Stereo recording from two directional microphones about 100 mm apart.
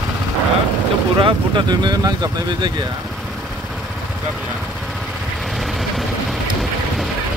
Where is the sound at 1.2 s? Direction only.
55° right (ahead or behind).